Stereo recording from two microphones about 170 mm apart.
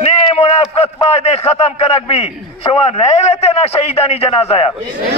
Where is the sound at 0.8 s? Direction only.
40° left (ahead or behind).